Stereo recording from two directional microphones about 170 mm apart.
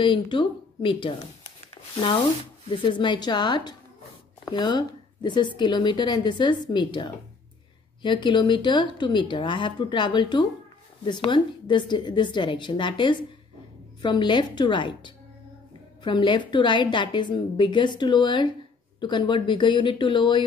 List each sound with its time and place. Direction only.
0.0 s a woman's voice: 30° left (ahead or behind)